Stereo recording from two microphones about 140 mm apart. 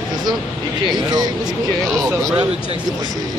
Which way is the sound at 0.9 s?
30° right (ahead or behind).